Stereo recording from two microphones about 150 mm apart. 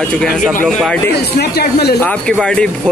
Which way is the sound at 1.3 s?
90° left.